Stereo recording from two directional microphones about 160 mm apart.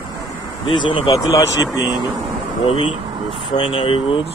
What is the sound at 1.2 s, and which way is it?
Speech, 20° left (ahead or behind).